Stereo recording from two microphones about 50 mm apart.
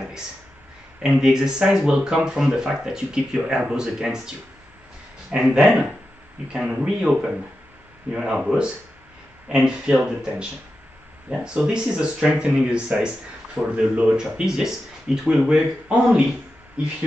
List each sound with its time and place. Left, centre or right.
1.0 s speech: centre
5.5 s speech: centre
14.1 s speech: centre